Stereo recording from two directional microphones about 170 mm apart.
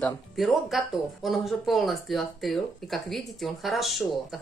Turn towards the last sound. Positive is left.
turn(degrees=0)  # may be behind; listen again after turning